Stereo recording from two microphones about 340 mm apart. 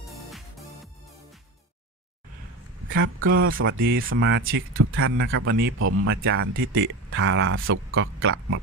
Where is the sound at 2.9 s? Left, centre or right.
Right.